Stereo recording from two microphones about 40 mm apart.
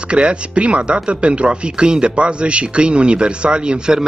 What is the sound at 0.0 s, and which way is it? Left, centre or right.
Speech, right.